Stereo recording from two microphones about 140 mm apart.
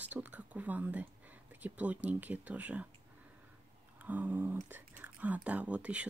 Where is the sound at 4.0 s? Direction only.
10° right (ahead or behind).